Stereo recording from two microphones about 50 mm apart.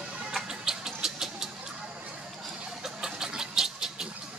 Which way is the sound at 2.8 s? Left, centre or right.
Centre.